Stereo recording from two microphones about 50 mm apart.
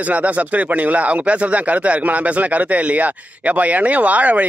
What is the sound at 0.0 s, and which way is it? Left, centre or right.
Speech, right.